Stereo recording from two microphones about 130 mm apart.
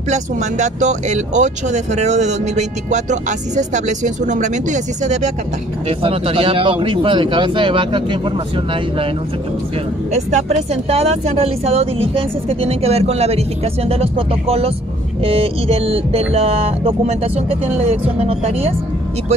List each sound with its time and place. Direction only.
0.1 s speech: 65° right (ahead or behind)
5.9 s speech: 45° right (ahead or behind)
10.1 s speech: 60° right (ahead or behind)